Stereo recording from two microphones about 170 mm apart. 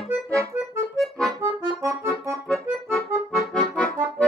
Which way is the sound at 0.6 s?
Centre (ahead or behind).